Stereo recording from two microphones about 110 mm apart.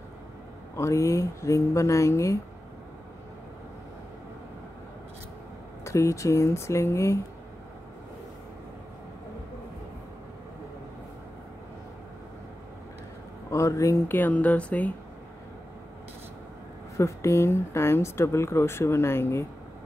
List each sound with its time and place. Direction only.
0.7 s speech: 30° left (ahead or behind)
5.9 s speech: 25° left (ahead or behind)
13.5 s speech: 30° left (ahead or behind)
16.9 s speech: 25° left (ahead or behind)